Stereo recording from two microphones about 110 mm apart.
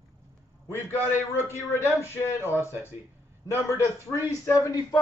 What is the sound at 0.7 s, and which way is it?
Speech, 20° left (ahead or behind).